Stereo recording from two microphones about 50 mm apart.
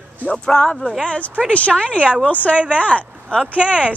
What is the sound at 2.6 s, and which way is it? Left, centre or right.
Speech, right.